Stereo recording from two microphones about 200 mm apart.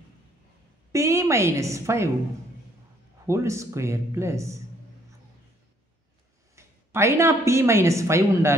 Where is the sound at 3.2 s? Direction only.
15° right (ahead or behind).